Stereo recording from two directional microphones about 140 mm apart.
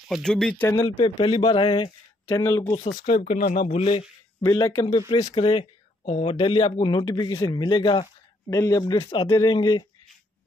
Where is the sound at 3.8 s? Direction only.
40° left (ahead or behind).